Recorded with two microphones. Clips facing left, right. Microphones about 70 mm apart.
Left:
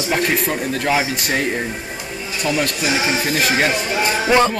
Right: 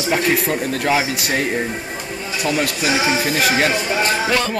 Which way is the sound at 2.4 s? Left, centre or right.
Centre.